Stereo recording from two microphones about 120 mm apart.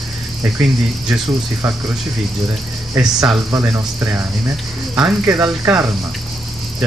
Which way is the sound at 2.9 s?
25° right (ahead or behind).